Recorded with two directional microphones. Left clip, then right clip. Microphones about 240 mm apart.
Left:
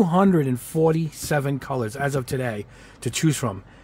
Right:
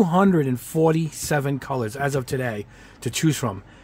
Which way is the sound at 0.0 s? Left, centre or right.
Centre.